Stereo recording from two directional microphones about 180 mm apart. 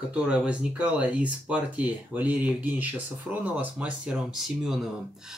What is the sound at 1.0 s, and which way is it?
Speech, 5° right (ahead or behind).